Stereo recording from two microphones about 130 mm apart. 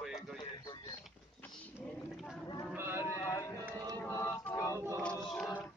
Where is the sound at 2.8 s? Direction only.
15° right (ahead or behind).